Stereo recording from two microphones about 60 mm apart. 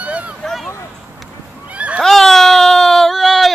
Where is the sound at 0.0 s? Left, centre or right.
Right.